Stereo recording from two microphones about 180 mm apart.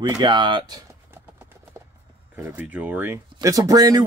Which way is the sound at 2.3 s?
10° right (ahead or behind).